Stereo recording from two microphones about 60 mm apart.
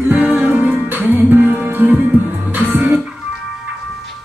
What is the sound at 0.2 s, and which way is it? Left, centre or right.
Music, right.